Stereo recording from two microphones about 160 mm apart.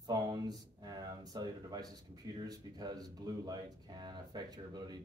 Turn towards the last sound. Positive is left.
turn(degrees=-25)  # may be behind; listen again after turning